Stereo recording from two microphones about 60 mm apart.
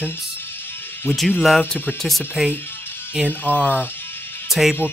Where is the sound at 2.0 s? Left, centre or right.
Centre.